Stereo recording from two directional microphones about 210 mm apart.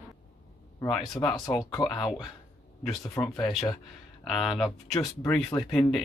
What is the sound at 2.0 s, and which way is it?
Speech, centre (ahead or behind).